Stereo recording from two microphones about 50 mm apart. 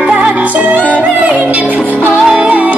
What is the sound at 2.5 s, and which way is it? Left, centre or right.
Music, right.